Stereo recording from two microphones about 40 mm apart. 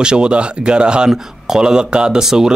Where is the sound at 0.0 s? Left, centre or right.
Right.